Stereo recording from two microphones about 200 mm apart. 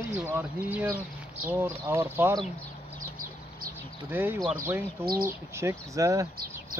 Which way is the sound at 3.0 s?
40° right (ahead or behind).